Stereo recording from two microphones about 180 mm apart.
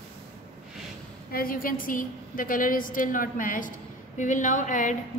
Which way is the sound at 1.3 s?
55° left (ahead or behind).